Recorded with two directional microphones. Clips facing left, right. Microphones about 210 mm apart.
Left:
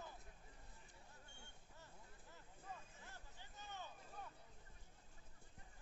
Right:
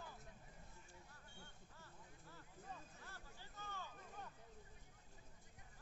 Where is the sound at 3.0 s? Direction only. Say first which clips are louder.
Right 1 dB; 20° left (ahead or behind).